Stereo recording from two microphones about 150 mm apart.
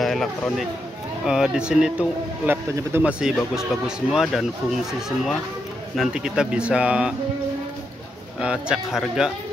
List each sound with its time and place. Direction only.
0.0 s a sound: centre (ahead or behind)
1.2 s speech: 5° right (ahead or behind)
5.9 s speech: 5° right (ahead or behind)
8.4 s speech: 5° right (ahead or behind)